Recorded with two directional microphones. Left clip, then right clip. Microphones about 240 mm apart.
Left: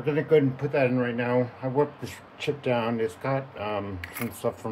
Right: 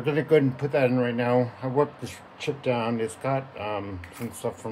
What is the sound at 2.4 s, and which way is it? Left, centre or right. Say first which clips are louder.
Speech: even; centre.